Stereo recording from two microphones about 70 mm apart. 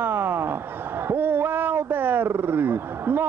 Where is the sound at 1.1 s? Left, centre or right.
Right.